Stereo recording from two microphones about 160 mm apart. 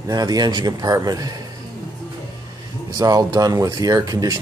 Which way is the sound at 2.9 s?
25° right (ahead or behind).